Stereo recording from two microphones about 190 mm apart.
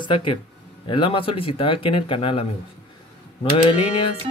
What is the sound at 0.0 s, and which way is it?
Speech, 25° left (ahead or behind).